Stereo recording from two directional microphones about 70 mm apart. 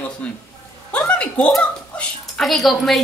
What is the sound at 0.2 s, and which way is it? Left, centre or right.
Speech, centre.